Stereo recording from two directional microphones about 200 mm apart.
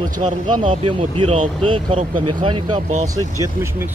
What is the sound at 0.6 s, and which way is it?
Speech, 25° right (ahead or behind).